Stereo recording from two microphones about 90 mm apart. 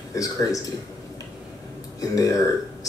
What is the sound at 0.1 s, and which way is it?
Speech, 40° left (ahead or behind).